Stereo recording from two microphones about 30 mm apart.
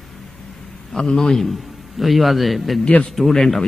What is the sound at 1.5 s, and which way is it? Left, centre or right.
A man's voice, centre.